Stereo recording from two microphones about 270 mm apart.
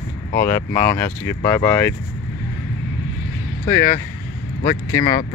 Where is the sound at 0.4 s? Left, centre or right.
Centre.